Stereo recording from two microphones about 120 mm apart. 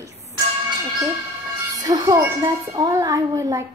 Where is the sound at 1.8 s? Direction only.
30° right (ahead or behind).